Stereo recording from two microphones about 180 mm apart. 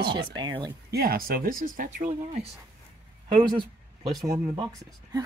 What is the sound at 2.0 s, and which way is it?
Speech, 40° right (ahead or behind).